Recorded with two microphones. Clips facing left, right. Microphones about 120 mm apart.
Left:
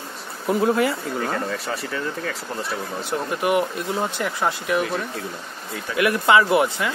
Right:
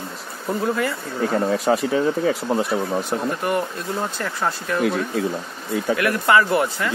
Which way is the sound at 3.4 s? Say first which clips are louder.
Left 2 dB; 10° left (ahead or behind).